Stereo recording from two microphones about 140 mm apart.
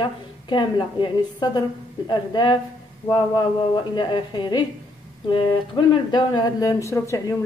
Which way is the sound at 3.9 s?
35° left (ahead or behind).